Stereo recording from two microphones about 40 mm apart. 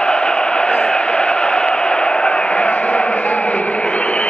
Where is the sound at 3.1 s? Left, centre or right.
Left.